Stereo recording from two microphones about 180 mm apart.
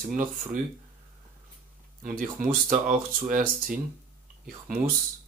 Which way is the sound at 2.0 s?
50° right (ahead or behind).